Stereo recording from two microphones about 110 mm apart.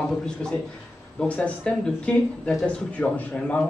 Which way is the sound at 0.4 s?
10° left (ahead or behind).